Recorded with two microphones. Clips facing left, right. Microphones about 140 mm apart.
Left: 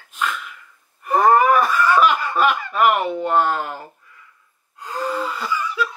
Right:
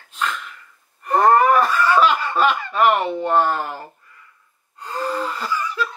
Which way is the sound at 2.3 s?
5° left (ahead or behind).